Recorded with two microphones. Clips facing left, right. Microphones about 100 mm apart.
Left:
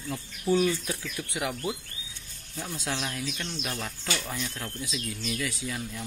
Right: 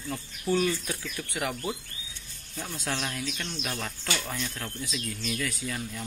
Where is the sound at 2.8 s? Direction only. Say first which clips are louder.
Right 1 dB; 10° left (ahead or behind).